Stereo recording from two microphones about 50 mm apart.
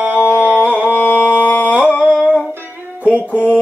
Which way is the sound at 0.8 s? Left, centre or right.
Right.